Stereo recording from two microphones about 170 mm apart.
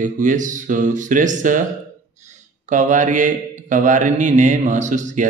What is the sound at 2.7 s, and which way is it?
Mantra, 45° right (ahead or behind).